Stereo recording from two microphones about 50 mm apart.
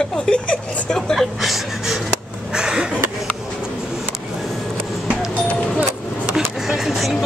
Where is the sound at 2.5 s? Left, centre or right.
Centre.